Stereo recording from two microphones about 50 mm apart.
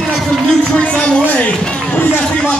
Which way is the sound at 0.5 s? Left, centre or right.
Centre.